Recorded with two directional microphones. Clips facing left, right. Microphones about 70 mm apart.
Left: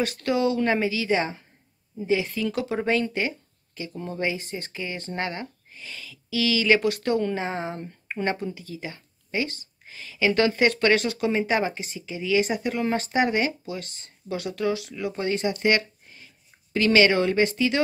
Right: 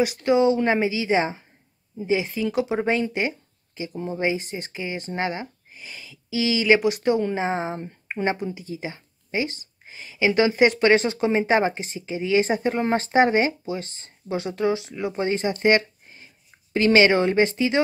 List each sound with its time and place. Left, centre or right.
0.0 s speech: centre
15.6 s a sound: right
16.7 s speech: right